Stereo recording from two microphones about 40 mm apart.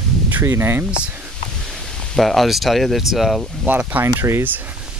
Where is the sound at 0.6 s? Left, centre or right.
Right.